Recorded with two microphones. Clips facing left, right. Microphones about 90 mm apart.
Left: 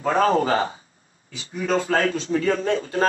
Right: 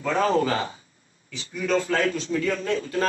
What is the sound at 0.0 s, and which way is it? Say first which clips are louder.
A man's voice: left 3 dB; 30° left (ahead or behind).